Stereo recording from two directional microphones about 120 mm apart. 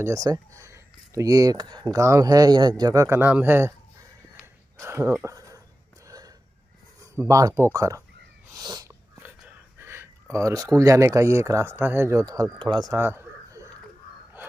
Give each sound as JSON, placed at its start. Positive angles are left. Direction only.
{"t": 0.0, "sound": "speech", "side_deg": -25}
{"t": 4.7, "sound": "speech", "side_deg": -20}
{"t": 6.0, "sound": "a sound", "side_deg": -30}
{"t": 7.0, "sound": "speech", "side_deg": -25}
{"t": 8.5, "sound": "wheeze", "side_deg": -30}
{"t": 9.8, "sound": "gasp", "side_deg": -20}
{"t": 10.3, "sound": "speech", "side_deg": -30}
{"t": 12.5, "sound": "speech", "side_deg": -40}
{"t": 12.9, "sound": "bird", "side_deg": -20}